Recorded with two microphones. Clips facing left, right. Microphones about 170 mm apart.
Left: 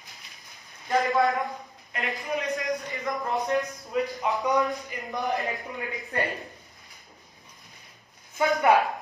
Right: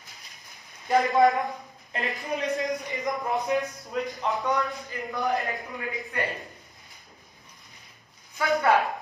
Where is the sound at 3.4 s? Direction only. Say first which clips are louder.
Even; centre (ahead or behind).